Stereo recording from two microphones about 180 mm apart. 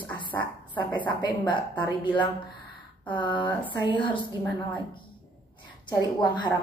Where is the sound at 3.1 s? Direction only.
25° left (ahead or behind).